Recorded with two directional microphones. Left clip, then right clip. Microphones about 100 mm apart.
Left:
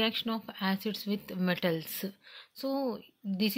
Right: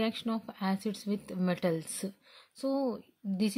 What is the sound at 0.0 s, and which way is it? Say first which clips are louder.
Speech: left 3 dB; 25° right (ahead or behind).